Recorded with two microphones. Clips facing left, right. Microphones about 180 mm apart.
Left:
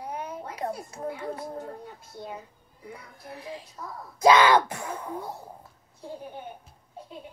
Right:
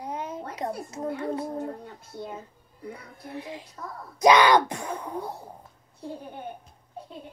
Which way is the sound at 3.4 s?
30° left (ahead or behind).